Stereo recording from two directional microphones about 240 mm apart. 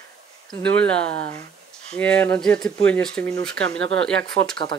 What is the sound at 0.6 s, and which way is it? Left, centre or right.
Speech, centre.